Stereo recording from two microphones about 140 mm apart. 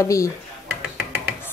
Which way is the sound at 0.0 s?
25° left (ahead or behind).